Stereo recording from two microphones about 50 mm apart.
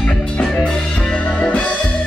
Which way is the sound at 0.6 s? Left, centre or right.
Centre.